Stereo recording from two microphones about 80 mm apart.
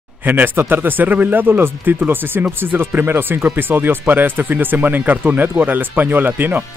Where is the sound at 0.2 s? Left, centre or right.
Right.